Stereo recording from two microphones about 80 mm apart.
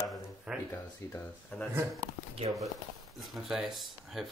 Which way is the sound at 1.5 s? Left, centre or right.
Left.